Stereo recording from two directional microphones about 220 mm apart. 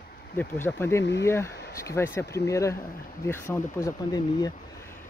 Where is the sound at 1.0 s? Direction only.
50° left (ahead or behind).